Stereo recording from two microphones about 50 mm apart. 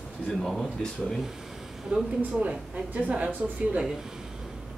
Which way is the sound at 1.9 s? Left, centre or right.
Right.